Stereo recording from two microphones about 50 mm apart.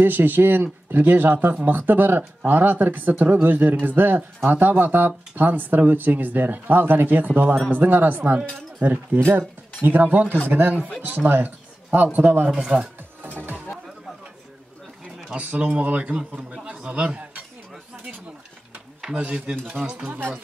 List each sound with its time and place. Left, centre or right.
0.0 s a man's voice: right
12.4 s a man's voice: centre
15.3 s speech: right
19.1 s speech: right
20.1 s speech: right